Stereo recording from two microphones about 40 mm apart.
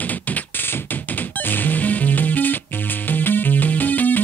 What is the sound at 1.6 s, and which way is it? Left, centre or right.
Music, left.